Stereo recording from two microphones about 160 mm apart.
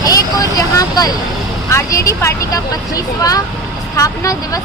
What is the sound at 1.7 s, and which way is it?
Speech, 20° left (ahead or behind).